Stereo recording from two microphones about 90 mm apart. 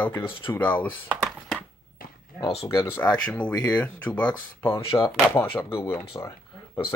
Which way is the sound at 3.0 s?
10° left (ahead or behind).